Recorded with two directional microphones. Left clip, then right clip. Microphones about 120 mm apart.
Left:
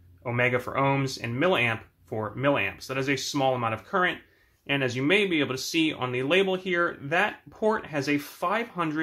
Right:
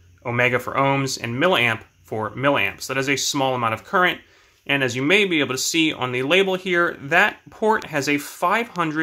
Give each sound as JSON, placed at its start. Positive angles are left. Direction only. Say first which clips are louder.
{"t": 0.2, "sound": "speech", "louder": "right 6 dB", "side_deg": -25}